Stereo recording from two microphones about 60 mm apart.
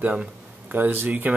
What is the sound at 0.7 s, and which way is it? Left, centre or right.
Speech, right.